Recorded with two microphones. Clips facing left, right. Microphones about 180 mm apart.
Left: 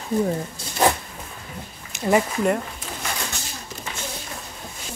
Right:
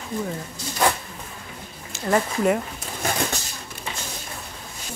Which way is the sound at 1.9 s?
10° left (ahead or behind).